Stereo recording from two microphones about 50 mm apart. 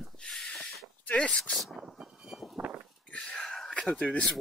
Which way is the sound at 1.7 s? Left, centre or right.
Centre.